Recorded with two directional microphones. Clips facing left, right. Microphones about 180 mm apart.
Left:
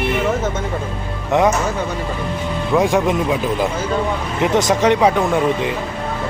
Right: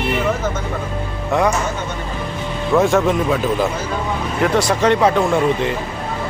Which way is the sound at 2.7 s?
15° left (ahead or behind).